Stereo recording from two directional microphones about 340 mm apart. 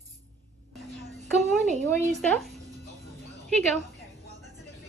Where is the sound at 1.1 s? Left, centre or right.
Centre.